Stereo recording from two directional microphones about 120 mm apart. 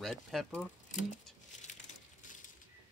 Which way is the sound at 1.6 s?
90° left.